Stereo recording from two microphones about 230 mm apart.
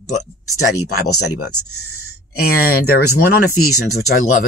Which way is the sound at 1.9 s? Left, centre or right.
Left.